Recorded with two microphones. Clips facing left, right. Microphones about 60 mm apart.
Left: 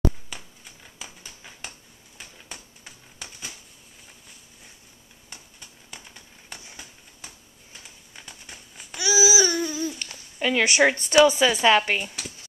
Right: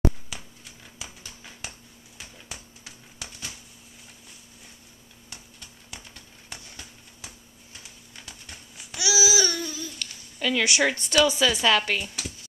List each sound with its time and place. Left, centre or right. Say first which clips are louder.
0.3 s finger snapping: even; centre
2.1 s a sound: even; centre
5.3 s a sound: even; centre
7.2 s babbling: even; centre
9.7 s babbling: left 7 dB; left
10.4 s speech: left 3 dB; left
12.0 s speech: left 1 dB; centre